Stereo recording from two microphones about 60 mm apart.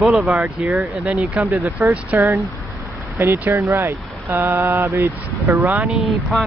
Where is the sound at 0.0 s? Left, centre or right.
Centre.